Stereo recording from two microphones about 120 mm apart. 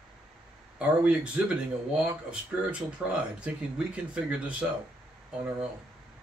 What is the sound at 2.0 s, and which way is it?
Speech, 10° right (ahead or behind).